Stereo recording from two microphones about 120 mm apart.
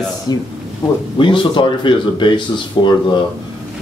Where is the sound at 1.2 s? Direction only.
45° left (ahead or behind).